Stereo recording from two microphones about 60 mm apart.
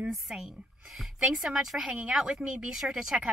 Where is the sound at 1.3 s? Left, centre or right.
Centre.